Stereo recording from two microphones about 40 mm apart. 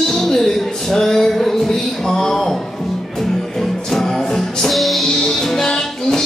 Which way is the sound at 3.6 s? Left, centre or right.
Centre.